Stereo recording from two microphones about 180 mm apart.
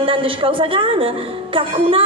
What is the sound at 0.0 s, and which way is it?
A woman's voice, 30° right (ahead or behind).